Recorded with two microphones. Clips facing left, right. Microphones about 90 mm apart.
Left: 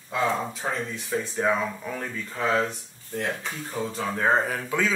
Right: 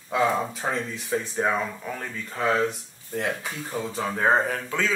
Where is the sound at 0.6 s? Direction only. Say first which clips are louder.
Right 1 dB; 20° right (ahead or behind).